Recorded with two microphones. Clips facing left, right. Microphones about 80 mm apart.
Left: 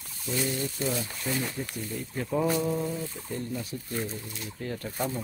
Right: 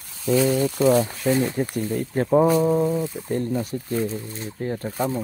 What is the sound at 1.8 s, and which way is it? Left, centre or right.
Speech, right.